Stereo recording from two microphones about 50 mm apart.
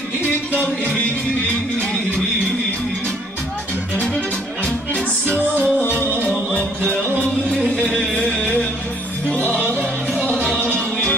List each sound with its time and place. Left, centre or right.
1.5 s music: centre
5.3 s music: left
10.7 s music: left